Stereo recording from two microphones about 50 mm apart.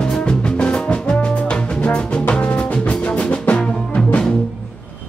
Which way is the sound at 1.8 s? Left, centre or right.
Left.